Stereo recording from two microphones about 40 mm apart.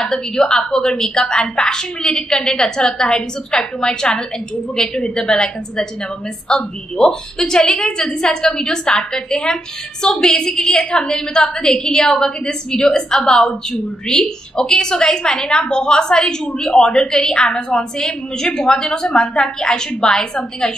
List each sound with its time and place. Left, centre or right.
0.0 s a woman's voice: centre